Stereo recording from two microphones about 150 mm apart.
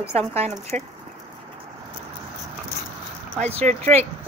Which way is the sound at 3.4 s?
45° right (ahead or behind).